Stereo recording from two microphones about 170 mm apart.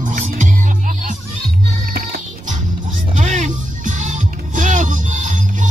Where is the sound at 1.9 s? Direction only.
60° right (ahead or behind).